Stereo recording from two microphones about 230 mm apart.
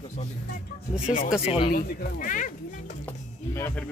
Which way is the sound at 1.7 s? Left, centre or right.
Left.